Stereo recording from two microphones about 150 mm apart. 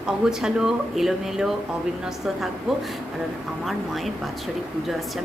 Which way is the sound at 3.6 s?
Centre (ahead or behind).